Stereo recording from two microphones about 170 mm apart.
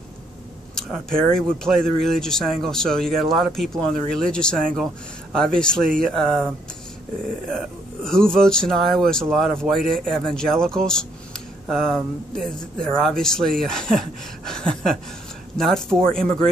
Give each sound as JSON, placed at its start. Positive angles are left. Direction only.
{"t": 1.3, "sound": "speech", "side_deg": 5}
{"t": 7.5, "sound": "speech", "side_deg": 5}